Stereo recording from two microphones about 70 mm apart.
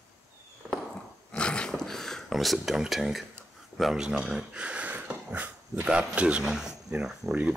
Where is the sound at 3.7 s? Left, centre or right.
Centre.